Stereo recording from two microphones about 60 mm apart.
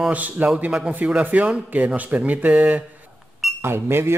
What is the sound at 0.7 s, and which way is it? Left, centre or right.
Speech, centre.